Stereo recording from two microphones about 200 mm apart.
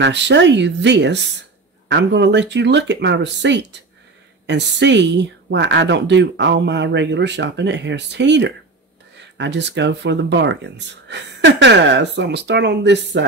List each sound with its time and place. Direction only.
0.0 s speech: 60° right (ahead or behind)